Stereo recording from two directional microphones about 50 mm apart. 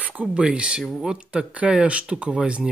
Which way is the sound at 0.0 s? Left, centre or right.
Right.